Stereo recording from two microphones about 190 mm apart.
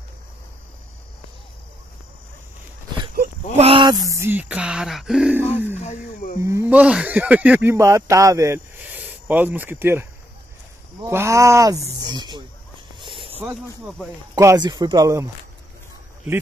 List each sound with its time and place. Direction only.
3.5 s speech: 30° right (ahead or behind); by 5.4 s 5° right (ahead or behind)
5.8 s speech: 40° left (ahead or behind)
6.4 s speech: 10° right (ahead or behind)
13.0 s a sound: 25° right (ahead or behind)
14.3 s speech: 20° right (ahead or behind)